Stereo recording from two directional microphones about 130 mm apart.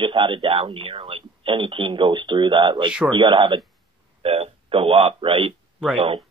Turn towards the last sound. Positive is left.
turn(degrees=-40)  # may be behind; listen again after turning